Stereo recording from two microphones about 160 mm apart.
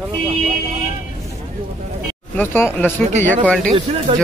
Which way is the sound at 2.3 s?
15° left (ahead or behind).